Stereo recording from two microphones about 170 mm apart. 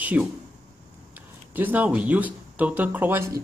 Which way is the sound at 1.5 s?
10° right (ahead or behind).